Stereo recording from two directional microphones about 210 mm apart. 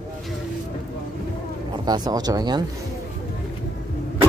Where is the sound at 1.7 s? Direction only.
20° right (ahead or behind).